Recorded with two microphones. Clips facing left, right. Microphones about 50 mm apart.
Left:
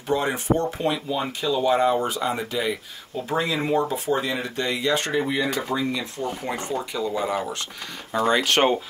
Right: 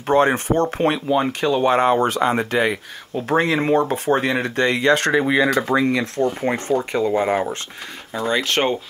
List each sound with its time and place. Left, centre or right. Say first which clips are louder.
0.1 s speech: right 6 dB; right
6.4 s speech: right 7 dB; right
8.3 s speech: even; centre